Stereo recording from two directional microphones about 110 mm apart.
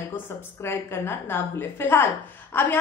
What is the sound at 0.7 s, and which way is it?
A woman's voice, 20° left (ahead or behind).